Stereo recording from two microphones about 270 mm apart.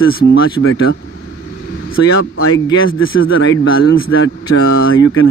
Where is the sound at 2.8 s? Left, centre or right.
Left.